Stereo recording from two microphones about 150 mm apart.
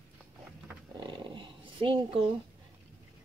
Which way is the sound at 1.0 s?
30° right (ahead or behind).